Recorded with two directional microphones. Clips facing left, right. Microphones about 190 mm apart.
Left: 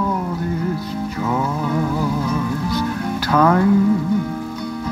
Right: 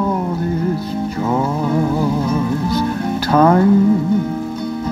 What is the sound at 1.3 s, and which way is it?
Music, 30° right (ahead or behind).